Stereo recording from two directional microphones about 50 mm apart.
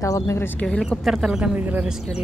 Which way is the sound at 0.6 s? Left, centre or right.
Centre.